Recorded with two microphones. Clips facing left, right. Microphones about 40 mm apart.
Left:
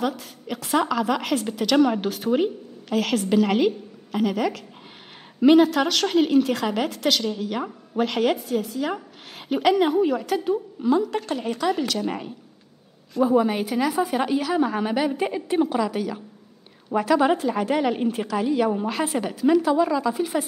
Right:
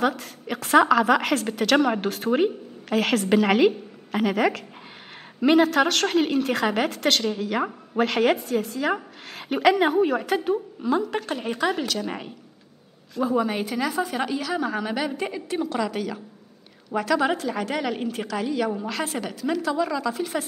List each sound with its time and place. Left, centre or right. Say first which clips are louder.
0.6 s a woman's voice: right 5 dB; right
1.3 s a woman's voice: even; right
2.9 s a woman's voice: right 1 dB; right
5.9 s a woman's voice: left 1 dB; right
6.5 s a woman's voice: right 1 dB; right
8.0 s a woman's voice: right 1 dB; right
9.8 s a woman's voice: even; right
10.5 s a woman's voice: left 2 dB; centre
11.8 s a woman's voice: left 2 dB; centre
15.7 s a woman's voice: left 2 dB; centre